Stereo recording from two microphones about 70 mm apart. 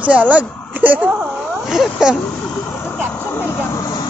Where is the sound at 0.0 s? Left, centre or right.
Right.